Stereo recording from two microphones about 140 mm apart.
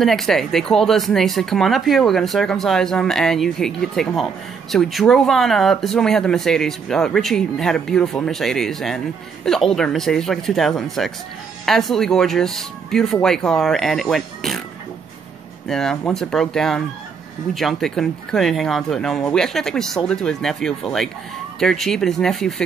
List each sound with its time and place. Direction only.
0.0 s speech: centre (ahead or behind)
15.7 s speech: 5° left (ahead or behind)